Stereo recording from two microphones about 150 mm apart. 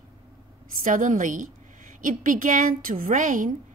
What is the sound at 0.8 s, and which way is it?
A woman's voice, 60° right (ahead or behind).